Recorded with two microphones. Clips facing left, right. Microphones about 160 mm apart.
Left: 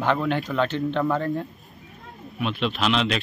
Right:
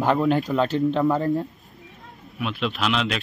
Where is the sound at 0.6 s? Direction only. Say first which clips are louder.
Right 2 dB; 40° right (ahead or behind).